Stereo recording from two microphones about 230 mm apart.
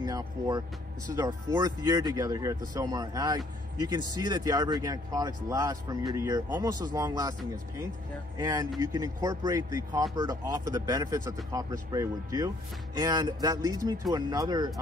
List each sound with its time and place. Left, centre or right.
0.0 s speech: centre
8.4 s speech: centre